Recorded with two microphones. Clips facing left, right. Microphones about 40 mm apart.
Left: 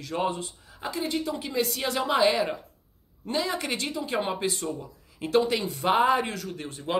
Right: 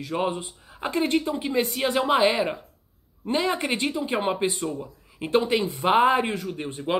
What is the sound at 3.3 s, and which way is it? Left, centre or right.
Speech, right.